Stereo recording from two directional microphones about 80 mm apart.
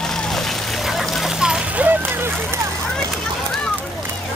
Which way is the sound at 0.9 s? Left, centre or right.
Centre.